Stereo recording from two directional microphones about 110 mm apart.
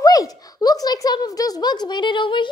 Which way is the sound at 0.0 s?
35° left (ahead or behind).